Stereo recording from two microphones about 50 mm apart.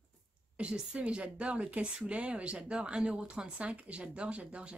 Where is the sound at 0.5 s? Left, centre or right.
Right.